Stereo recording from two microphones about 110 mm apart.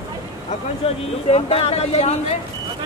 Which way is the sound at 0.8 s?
65° left (ahead or behind).